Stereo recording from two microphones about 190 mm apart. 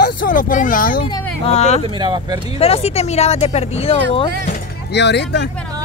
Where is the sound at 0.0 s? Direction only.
45° left (ahead or behind).